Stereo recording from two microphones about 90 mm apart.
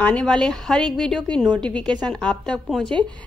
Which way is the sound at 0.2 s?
5° left (ahead or behind).